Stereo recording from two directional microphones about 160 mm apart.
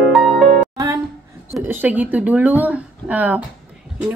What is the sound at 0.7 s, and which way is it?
Music, 20° right (ahead or behind).